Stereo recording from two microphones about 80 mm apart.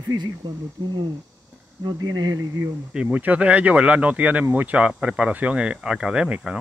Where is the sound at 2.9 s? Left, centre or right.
Centre.